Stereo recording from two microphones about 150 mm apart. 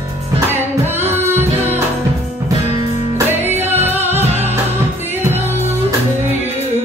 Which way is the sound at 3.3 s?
15° right (ahead or behind).